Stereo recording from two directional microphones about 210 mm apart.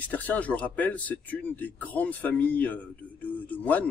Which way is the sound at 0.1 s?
5° left (ahead or behind).